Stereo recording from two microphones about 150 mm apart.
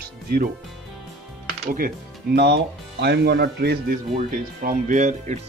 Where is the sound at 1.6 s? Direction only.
70° right (ahead or behind); by 4.0 s 90° right.